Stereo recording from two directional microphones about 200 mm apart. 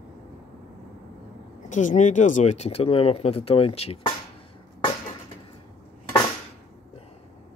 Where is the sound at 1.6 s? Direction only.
40° left (ahead or behind).